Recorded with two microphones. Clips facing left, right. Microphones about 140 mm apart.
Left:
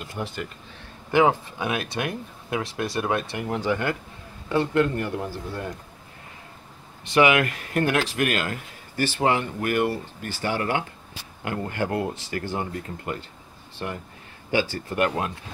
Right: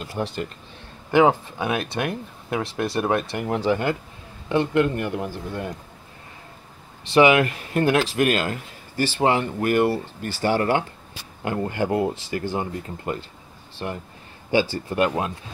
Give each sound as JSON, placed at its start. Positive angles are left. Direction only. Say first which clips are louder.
{"t": 0.0, "sound": "speech", "louder": "right 4 dB", "side_deg": -30}
{"t": 7.2, "sound": "speech", "louder": "right 3 dB", "side_deg": -25}
{"t": 11.4, "sound": "speech", "louder": "right 3 dB", "side_deg": -25}